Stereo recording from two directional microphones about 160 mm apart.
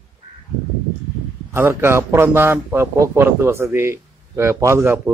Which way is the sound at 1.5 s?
15° right (ahead or behind).